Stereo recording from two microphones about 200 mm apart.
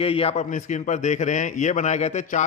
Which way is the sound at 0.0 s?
30° left (ahead or behind).